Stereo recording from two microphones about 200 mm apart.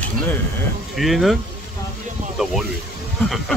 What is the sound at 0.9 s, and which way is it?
Speech, centre (ahead or behind).